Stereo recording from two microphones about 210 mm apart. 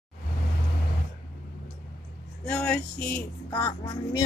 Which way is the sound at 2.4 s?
5° left (ahead or behind).